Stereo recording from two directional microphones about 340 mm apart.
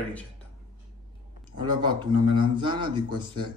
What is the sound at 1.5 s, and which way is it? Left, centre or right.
A man's voice, centre.